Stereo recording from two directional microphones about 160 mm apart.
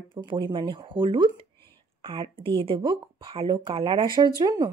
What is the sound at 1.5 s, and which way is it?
Whispering, 15° left (ahead or behind).